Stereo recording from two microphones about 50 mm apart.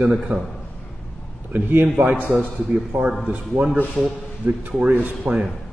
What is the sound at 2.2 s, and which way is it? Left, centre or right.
A man's voice, right.